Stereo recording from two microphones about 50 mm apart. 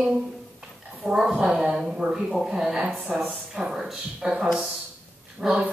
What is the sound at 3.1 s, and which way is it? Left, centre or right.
Speech, right.